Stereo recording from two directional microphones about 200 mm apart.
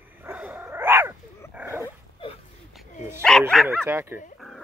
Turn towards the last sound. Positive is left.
turn(degrees=-10)  # may be behind; listen again after turning